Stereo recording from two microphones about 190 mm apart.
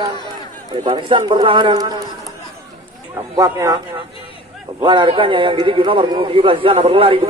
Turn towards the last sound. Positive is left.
turn(degrees=-30)  # may be behind; listen again after turning